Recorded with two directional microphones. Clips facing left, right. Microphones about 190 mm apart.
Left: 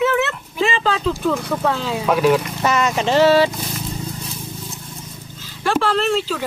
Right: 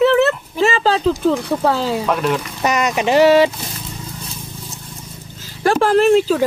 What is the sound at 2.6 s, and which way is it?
Speech, 15° right (ahead or behind).